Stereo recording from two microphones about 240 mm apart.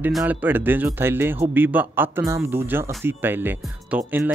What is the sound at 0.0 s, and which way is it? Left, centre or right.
A man's voice, centre.